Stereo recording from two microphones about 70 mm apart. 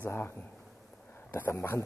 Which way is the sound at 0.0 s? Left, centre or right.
Left.